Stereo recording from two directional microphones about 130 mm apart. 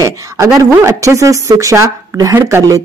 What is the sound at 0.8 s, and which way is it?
Speech, 25° right (ahead or behind).